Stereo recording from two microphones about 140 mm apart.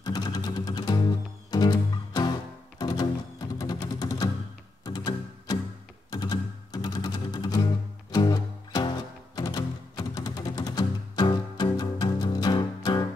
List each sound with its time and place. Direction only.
0.0 s music: 30° left (ahead or behind)